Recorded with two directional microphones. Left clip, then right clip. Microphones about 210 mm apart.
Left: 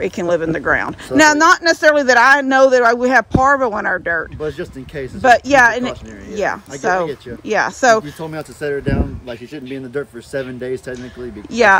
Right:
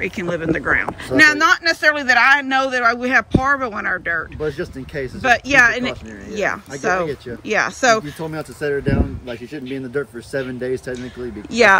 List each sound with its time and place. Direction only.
0.0 s speech: 15° left (ahead or behind)
4.4 s a man's voice: centre (ahead or behind)
5.2 s speech: 20° left (ahead or behind)
8.0 s a man's voice: 5° left (ahead or behind)